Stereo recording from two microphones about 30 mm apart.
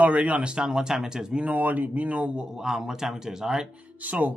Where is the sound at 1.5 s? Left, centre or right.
Right.